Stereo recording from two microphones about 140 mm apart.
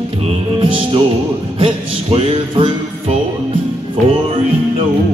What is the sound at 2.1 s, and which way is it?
Music, 40° right (ahead or behind).